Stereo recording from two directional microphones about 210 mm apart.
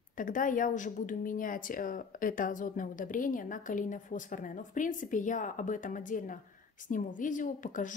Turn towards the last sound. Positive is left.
turn(degrees=40)  # may be behind; listen again after turning